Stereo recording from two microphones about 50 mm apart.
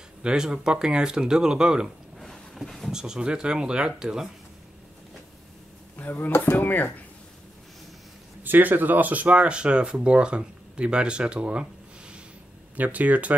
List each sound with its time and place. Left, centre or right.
0.2 s speech: centre
2.1 s a sound: centre
2.6 s speech: centre
2.9 s speech: centre
5.9 s speech: left
8.5 s speech: right
12.7 s speech: right